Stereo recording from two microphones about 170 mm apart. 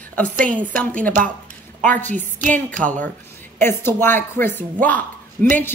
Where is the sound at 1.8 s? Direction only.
10° left (ahead or behind).